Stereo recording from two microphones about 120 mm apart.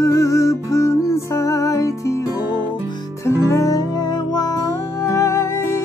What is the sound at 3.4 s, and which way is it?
Music, 25° left (ahead or behind).